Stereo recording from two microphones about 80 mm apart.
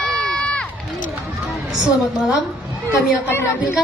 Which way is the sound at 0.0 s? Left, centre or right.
Centre.